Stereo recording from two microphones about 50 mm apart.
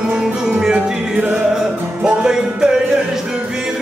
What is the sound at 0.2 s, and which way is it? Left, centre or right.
Music, centre.